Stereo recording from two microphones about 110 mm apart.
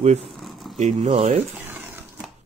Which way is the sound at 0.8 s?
90° right.